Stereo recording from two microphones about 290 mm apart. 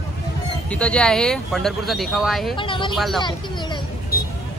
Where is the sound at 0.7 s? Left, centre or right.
Centre.